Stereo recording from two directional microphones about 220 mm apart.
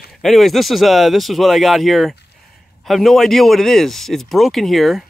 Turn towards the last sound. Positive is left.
turn(degrees=0)  # may be behind; listen again after turning